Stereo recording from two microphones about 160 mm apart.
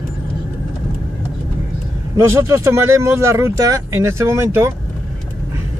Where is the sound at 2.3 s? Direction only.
15° right (ahead or behind).